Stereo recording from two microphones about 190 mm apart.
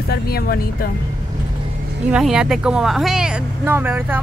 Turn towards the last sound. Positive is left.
turn(degrees=-10)  # may be behind; listen again after turning